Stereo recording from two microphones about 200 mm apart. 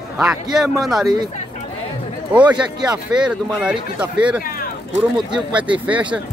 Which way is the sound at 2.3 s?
5° right (ahead or behind).